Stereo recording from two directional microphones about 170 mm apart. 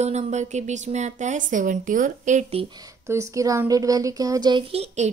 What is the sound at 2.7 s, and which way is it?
Speech, 20° right (ahead or behind).